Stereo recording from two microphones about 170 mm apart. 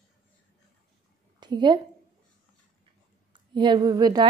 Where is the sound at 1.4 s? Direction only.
25° right (ahead or behind).